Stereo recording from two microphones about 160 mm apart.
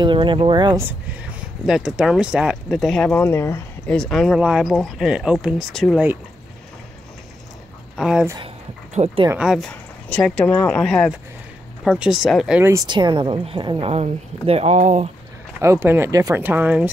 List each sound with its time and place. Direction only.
0.0 s speech: 30° right (ahead or behind)
1.7 s speech: 5° right (ahead or behind); by 3.6 s 15° left (ahead or behind)
3.8 s speech: 5° left (ahead or behind)
8.0 s speech: 5° right (ahead or behind)
8.9 s speech: 45° right (ahead or behind)
9.4 s speech: centre (ahead or behind)
12.8 s a woman's voice: 30° right (ahead or behind); by 15.0 s 45° right (ahead or behind)
15.6 s speech: 15° right (ahead or behind)